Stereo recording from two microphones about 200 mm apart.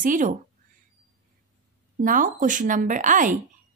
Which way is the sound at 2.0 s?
40° right (ahead or behind).